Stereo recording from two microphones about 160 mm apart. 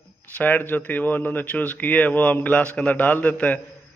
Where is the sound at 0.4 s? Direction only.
10° left (ahead or behind).